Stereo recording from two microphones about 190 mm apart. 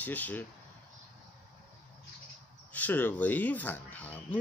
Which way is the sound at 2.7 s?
10° left (ahead or behind).